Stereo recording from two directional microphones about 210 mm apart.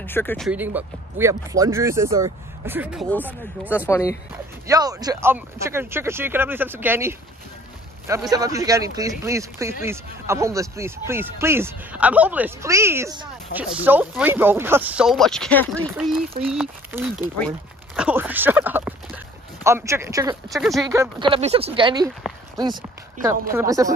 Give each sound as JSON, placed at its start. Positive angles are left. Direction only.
{"t": 0.0, "sound": "speech", "side_deg": 10}
{"t": 0.5, "sound": "speech", "side_deg": -10}
{"t": 3.1, "sound": "speech", "side_deg": 10}
{"t": 4.6, "sound": "speech", "side_deg": -15}
{"t": 20.4, "sound": "speech", "side_deg": 0}
{"t": 20.8, "sound": "speech", "side_deg": -15}
{"t": 21.3, "sound": "speech", "side_deg": -30}